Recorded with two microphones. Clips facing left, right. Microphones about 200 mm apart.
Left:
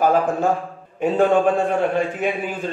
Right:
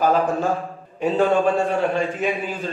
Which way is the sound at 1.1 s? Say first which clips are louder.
Left 2 dB; 50° left (ahead or behind).